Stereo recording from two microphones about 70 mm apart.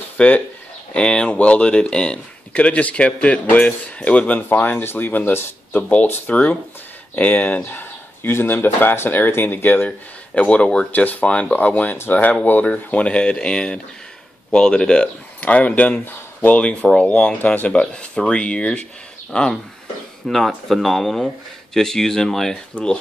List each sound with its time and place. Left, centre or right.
0.2 s speech: centre
10.9 s speech: left
20.2 s speech: centre